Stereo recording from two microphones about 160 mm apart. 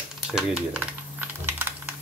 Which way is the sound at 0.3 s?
5° right (ahead or behind).